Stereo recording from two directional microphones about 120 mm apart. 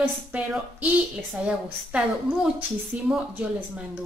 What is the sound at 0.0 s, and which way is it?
Speech, 10° right (ahead or behind).